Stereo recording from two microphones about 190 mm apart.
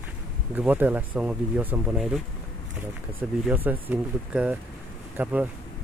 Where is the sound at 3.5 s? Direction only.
10° right (ahead or behind).